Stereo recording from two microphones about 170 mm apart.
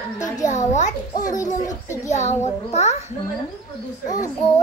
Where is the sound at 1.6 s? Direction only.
20° left (ahead or behind).